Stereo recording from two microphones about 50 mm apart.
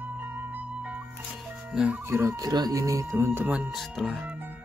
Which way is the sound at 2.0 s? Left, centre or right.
Right.